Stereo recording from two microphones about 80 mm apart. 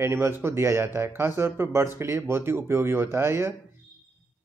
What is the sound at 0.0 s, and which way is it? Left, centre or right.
A man's voice, right.